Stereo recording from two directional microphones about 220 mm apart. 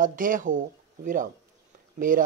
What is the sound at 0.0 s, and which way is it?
Speech, 40° right (ahead or behind).